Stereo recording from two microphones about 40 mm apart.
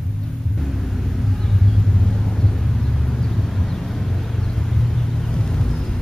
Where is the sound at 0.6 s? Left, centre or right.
Centre.